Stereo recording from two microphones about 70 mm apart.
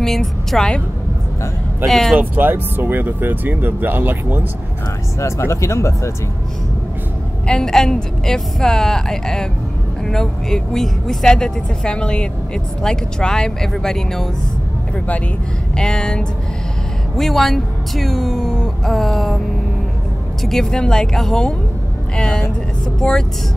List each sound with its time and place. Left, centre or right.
0.0 s a woman's voice: centre
1.9 s speech: centre
2.1 s speech: right
5.2 s speech: left
7.4 s speech: centre
15.7 s speech: centre
20.4 s speech: centre